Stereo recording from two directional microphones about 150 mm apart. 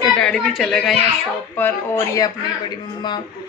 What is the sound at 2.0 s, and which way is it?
Speech, 25° left (ahead or behind).